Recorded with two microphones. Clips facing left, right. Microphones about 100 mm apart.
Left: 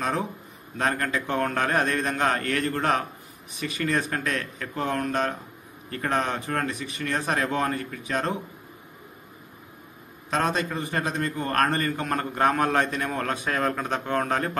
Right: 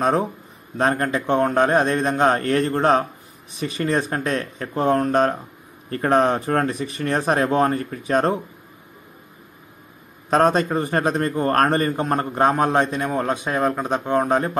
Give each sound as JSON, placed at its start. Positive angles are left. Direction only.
{"t": 0.0, "sound": "a man's voice", "side_deg": -35}
{"t": 10.3, "sound": "a man's voice", "side_deg": -40}